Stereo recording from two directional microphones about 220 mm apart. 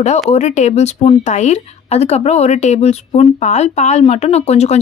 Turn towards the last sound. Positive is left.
turn(degrees=30)  # may be behind; listen again after turning